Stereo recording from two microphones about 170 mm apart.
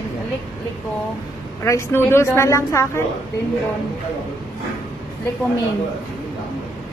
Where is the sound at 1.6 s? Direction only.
15° left (ahead or behind).